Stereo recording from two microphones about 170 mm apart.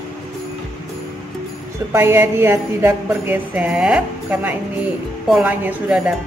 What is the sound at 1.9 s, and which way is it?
Music, 15° right (ahead or behind).